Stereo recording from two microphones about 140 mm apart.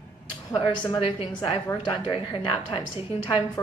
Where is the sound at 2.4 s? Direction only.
40° left (ahead or behind).